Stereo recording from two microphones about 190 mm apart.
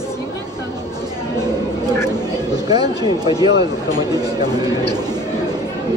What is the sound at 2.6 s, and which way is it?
A man's voice, 20° right (ahead or behind).